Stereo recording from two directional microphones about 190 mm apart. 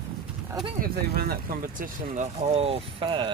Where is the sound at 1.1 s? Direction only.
55° right (ahead or behind).